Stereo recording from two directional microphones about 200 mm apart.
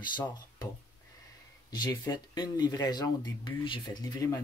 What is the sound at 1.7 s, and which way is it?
Speech, 20° left (ahead or behind).